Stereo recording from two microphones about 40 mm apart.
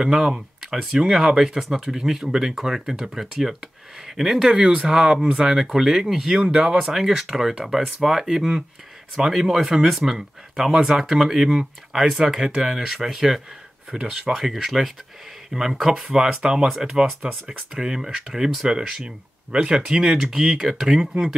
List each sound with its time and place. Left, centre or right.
0.0 s speech: centre